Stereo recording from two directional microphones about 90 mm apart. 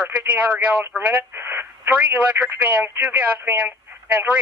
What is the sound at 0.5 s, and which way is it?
Speech, 20° right (ahead or behind).